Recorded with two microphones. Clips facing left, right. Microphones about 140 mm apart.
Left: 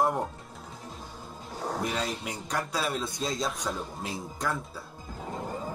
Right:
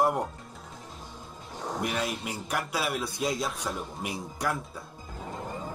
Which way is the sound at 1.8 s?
10° right (ahead or behind).